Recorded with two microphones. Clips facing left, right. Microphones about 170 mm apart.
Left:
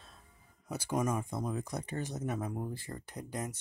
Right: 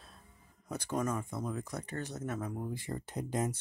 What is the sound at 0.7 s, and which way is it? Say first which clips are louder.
Speech: left 1 dB; 10° left (ahead or behind).